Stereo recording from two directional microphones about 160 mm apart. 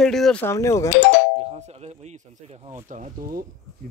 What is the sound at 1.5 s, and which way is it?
Speech, 40° right (ahead or behind).